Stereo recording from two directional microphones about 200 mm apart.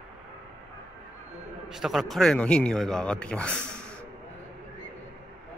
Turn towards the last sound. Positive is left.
turn(degrees=5)  # may be behind; listen again after turning